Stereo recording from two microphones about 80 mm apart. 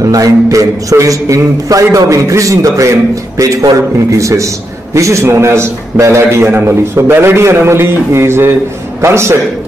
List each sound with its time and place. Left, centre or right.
0.0 s a man's voice: right